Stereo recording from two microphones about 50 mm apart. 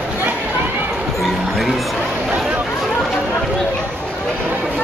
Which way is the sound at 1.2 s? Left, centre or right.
Centre.